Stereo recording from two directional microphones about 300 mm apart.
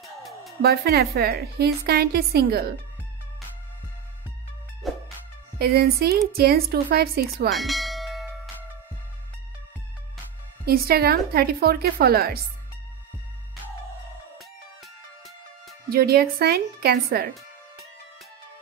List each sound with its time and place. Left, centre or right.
0.0 s music: centre
0.6 s a woman's voice: right
4.8 s music: centre
5.6 s a woman's voice: right
7.5 s church bell: centre
10.6 s a woman's voice: right
15.9 s a woman's voice: right